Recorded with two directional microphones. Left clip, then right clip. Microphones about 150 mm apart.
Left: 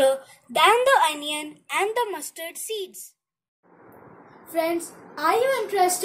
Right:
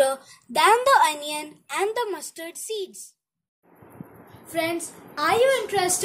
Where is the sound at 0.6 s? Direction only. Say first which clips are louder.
Even; 45° right (ahead or behind).